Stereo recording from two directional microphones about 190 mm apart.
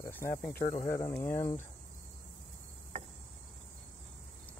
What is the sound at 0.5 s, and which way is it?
Speech, 50° left (ahead or behind).